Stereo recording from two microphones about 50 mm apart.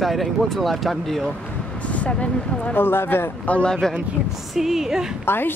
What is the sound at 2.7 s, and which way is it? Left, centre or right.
Speech, left.